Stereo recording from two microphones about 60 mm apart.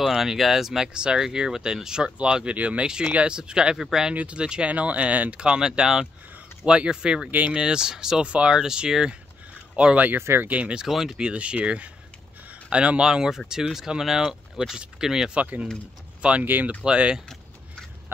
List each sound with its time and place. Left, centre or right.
0.0 s speech: centre
4.1 s speech: right
7.2 s speech: right
7.5 s speech: centre
10.2 s speech: right
10.5 s speech: centre
10.9 s speech: centre
11.2 s speech: centre
15.3 s speech: right
16.4 s speech: right
16.8 s speech: centre